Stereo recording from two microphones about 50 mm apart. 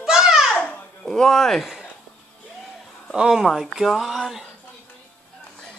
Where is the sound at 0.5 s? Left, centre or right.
Left.